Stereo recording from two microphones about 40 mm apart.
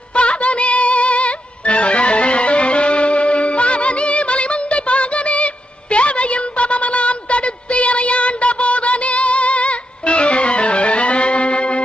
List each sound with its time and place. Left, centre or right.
0.1 s music: left